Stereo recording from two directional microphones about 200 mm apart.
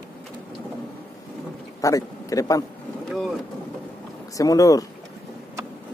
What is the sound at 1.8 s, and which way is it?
Speech, 15° left (ahead or behind).